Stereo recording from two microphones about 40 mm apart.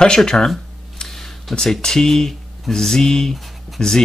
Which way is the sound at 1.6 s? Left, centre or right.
Centre.